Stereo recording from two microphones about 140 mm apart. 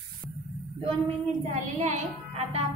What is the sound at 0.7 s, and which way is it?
A woman's voice, 45° right (ahead or behind).